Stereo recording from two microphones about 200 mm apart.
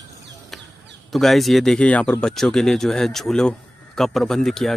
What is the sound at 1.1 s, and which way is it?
Speech, centre (ahead or behind).